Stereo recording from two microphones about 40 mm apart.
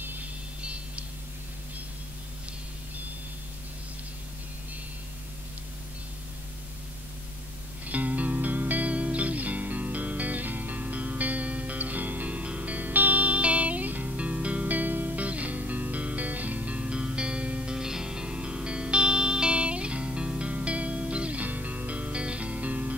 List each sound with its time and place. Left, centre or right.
0.0 s music: right
0.6 s a sound: right
7.8 s music: right
14.1 s music: right
16.8 s music: right
21.4 s music: right